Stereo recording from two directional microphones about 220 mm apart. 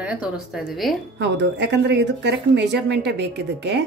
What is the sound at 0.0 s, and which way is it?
Speech, 5° right (ahead or behind).